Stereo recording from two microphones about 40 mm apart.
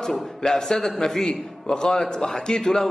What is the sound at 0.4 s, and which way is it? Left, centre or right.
A man's voice, centre.